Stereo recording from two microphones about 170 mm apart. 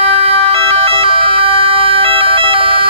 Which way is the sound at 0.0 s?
35° right (ahead or behind).